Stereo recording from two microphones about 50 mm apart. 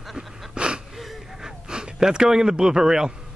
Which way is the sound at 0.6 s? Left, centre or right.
Centre.